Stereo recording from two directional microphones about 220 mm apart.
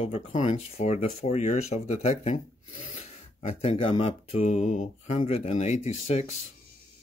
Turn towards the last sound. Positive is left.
turn(degrees=30)  # may be behind; listen again after turning